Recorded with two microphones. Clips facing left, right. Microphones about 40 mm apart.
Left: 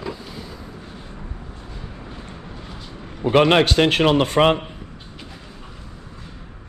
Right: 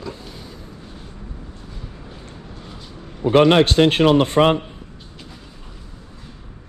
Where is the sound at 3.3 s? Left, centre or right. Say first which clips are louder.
Right 2 dB; left.